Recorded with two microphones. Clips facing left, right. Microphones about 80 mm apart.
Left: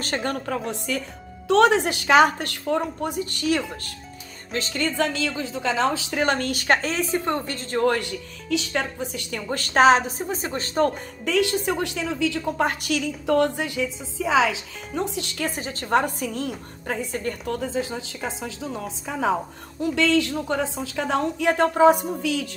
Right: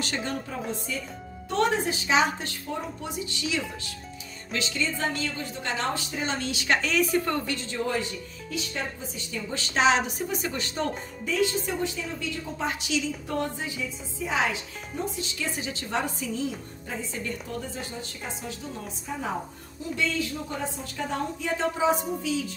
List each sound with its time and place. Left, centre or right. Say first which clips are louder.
0.0 s speech: left 4 dB; left
1.5 s speech: left 8 dB; left
4.5 s speech: left 3 dB; left
4.7 s a woman's voice: left 6 dB; left
6.0 s speech: left 7 dB; left
7.5 s speech: left 7 dB; left
11.2 s a woman's voice: left 5 dB; left
13.3 s speech: left 12 dB; left
17.5 s a woman's voice: left 8 dB; left
19.8 s a woman's voice: left 8 dB; left
22.2 s a woman's voice: left 3 dB; left